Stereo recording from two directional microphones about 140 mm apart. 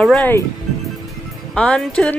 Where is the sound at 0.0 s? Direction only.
5° left (ahead or behind).